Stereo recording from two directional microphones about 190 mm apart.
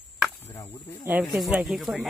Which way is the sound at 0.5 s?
20° left (ahead or behind).